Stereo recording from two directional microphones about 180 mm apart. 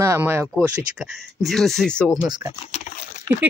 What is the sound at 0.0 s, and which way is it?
Speech, 15° right (ahead or behind).